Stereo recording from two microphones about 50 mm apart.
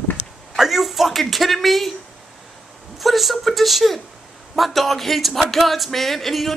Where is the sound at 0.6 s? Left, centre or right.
Centre.